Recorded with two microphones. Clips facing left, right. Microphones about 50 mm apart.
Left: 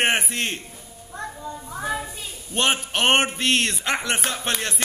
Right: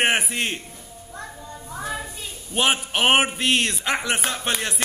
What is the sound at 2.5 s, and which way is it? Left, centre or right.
A man's voice, centre.